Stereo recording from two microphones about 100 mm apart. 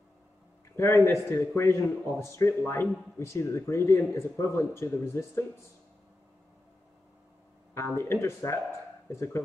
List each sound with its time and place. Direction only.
0.7 s a man's voice: 30° left (ahead or behind)
7.7 s a man's voice: 25° left (ahead or behind)